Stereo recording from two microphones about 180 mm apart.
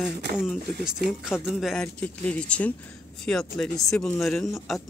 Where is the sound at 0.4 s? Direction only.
Centre (ahead or behind).